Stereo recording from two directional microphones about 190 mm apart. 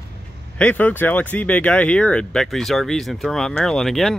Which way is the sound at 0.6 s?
10° left (ahead or behind).